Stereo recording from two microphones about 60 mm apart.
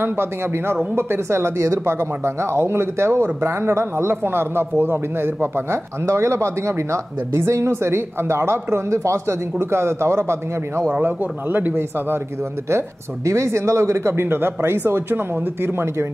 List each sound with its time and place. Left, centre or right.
0.0 s speech: right
10.9 s speech: right
12.6 s speech: right